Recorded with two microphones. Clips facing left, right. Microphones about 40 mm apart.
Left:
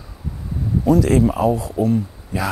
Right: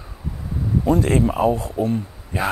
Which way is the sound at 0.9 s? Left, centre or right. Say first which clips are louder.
Left 3 dB; right.